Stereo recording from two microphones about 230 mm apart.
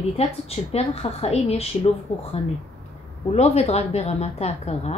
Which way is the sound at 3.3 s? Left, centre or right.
Left.